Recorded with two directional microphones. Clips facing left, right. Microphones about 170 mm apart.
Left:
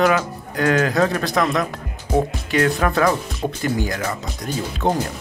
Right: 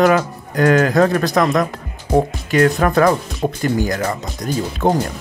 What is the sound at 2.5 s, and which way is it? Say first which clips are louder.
A man's voice: right 5 dB; 45° right (ahead or behind).